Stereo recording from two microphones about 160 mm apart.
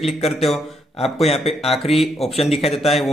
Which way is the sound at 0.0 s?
40° left (ahead or behind).